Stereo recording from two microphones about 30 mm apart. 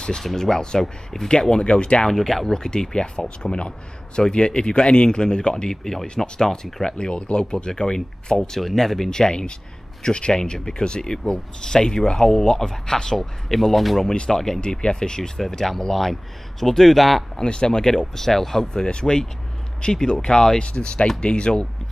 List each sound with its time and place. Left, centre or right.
0.2 s speech: centre
0.5 s speech: left
1.6 s speech: left
2.0 s speech: centre
2.5 s speech: left
5.7 s speech: centre
8.5 s speech: centre
9.1 s speech: left
12.2 s speech: centre
14.6 s speech: left
15.9 s speech: centre
17.4 s speech: left; by 18.7 s centre
18.7 s speech: left